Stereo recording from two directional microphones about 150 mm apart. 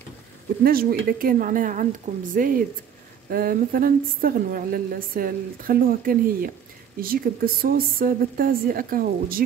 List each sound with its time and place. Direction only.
0.7 s a woman's voice: 80° right